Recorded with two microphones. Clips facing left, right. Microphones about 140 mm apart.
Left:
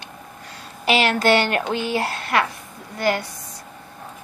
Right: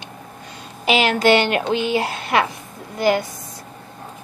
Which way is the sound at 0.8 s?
20° right (ahead or behind).